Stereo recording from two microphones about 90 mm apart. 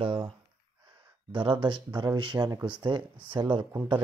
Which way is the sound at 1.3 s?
65° right (ahead or behind).